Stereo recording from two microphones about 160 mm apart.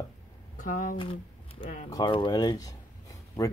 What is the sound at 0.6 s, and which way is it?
Speech, 55° left (ahead or behind).